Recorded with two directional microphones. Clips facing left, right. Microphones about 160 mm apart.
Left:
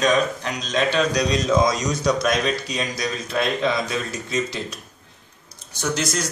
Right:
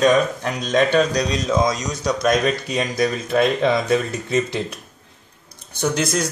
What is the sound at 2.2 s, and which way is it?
Speech, 50° right (ahead or behind).